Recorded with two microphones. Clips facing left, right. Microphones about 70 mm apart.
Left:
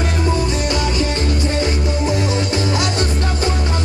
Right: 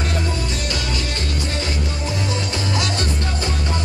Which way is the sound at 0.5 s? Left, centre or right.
Centre.